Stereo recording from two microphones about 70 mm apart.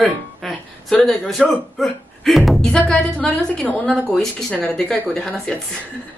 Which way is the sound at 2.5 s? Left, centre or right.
Centre.